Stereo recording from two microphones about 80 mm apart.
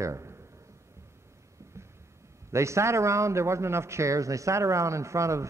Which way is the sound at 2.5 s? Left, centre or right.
Right.